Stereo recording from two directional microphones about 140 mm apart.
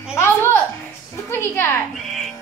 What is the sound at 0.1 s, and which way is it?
Music, 15° left (ahead or behind).